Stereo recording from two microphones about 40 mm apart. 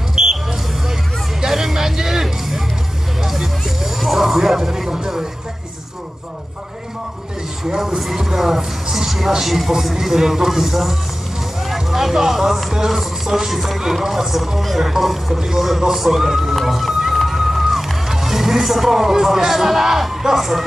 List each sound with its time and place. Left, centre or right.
0.1 s hubbub: centre
1.4 s music: centre
7.6 s speech: centre
11.6 s music: centre
12.7 s speech: centre
16.6 s music: centre